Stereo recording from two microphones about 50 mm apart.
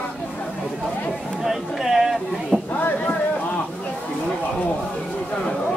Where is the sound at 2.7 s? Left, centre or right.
Left.